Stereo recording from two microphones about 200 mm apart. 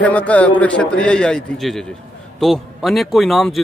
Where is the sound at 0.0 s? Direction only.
5° left (ahead or behind).